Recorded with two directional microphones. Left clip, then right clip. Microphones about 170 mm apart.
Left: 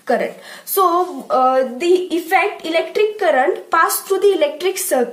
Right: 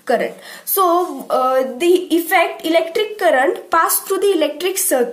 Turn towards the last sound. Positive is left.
turn(degrees=-20)  # may be behind; listen again after turning